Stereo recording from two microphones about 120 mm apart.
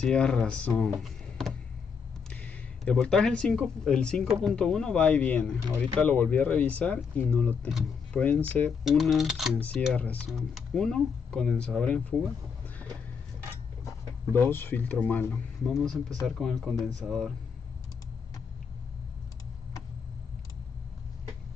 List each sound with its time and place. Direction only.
0.0 s speech: 10° left (ahead or behind)
8.8 s speech: centre (ahead or behind)
9.6 s speech: 10° left (ahead or behind)
14.4 s speech: 20° left (ahead or behind)
15.6 s speech: centre (ahead or behind)